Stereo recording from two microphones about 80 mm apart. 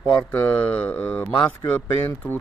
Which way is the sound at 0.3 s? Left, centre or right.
Centre.